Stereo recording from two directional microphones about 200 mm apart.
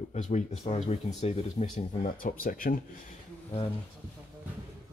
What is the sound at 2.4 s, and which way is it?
Speech, 45° left (ahead or behind).